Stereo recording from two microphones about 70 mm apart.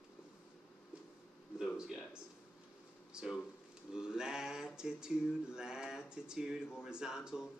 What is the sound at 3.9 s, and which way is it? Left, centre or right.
Mantra, centre.